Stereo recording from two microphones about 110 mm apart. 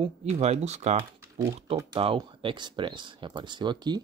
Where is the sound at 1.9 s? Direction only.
55° right (ahead or behind).